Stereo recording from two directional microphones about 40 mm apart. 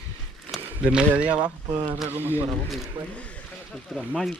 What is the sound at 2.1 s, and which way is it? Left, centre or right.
Speech, right.